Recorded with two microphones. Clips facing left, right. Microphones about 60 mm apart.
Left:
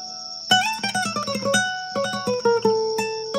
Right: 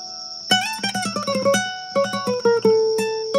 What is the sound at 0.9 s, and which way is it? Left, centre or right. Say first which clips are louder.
Music: left 1 dB; centre.